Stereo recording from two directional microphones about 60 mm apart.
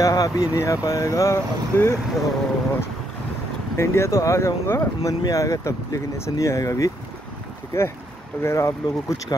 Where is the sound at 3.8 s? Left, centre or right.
Left.